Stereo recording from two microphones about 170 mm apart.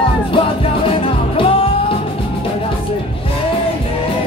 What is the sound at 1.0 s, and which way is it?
Music, 35° left (ahead or behind).